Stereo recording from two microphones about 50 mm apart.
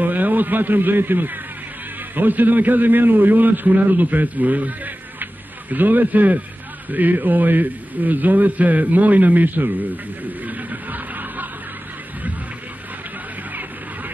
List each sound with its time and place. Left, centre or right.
0.0 s a man's voice: right
10.4 s a sound: right
13.5 s music: right